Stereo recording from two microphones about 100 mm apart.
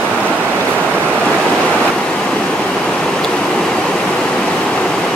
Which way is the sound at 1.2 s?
10° left (ahead or behind).